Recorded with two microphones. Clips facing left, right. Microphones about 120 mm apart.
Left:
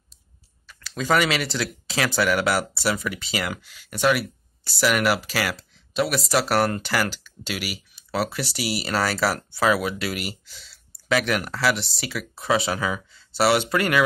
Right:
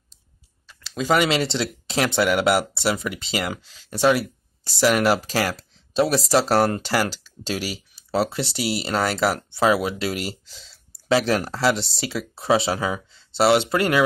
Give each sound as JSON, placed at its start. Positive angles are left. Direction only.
{"t": 0.7, "sound": "speech", "side_deg": -20}